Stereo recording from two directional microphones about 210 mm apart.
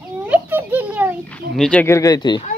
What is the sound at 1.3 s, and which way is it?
Speech, 5° left (ahead or behind).